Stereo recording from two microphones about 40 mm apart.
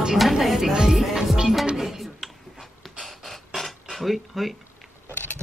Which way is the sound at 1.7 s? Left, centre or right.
Centre.